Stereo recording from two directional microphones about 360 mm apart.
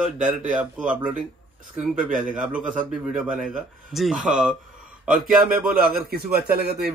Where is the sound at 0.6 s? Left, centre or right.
Centre.